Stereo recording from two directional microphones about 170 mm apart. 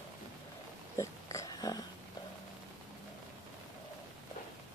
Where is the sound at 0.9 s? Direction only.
20° left (ahead or behind).